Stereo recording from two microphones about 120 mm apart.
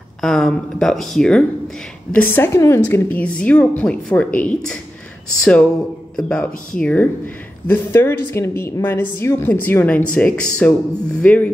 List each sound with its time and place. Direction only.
0.2 s speech: 5° left (ahead or behind)
2.1 s a woman's voice: 20° left (ahead or behind)